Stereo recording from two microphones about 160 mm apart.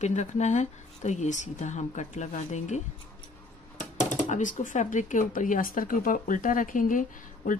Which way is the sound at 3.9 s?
50° left (ahead or behind).